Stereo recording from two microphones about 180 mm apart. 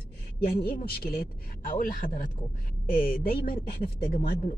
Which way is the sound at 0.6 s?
55° left (ahead or behind).